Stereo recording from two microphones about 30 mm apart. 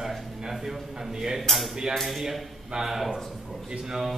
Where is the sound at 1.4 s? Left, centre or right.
Centre.